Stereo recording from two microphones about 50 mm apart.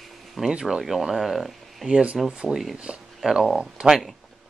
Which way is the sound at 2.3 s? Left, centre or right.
Centre.